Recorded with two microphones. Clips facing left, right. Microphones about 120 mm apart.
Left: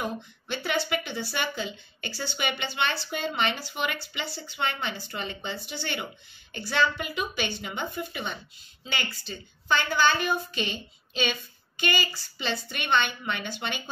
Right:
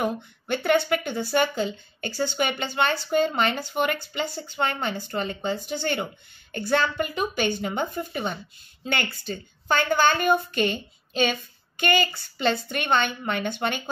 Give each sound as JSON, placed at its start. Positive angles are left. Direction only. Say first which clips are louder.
{"t": 0.0, "sound": "speech", "louder": "right 6 dB", "side_deg": -55}
{"t": 8.8, "sound": "speech", "louder": "right 6 dB", "side_deg": -55}